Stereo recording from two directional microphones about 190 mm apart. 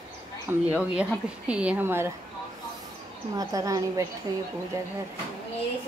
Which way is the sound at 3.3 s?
20° right (ahead or behind).